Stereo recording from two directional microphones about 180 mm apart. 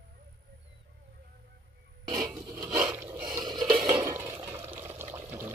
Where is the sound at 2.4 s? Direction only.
25° right (ahead or behind).